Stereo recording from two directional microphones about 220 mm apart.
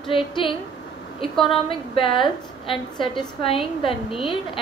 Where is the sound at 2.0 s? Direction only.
25° left (ahead or behind).